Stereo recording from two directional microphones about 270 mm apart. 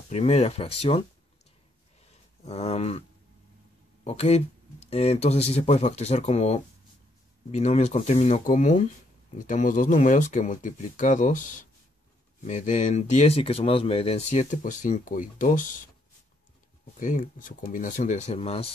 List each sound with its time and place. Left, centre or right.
0.1 s speech: left
2.4 s speech: left
4.0 s speech: left
12.4 s speech: left
16.9 s speech: left